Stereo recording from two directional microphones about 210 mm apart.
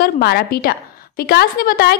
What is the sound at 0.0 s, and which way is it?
A woman's voice, 50° left (ahead or behind).